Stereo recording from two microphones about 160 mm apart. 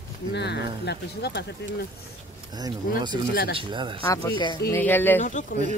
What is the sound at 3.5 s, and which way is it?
Speech, 30° right (ahead or behind).